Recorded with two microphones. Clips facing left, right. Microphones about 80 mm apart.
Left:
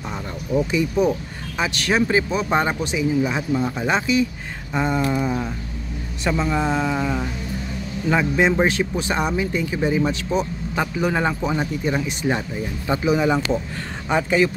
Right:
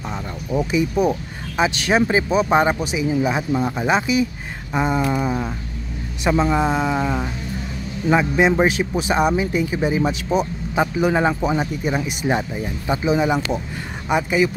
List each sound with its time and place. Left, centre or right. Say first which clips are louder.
0.6 s speech: right 1 dB; centre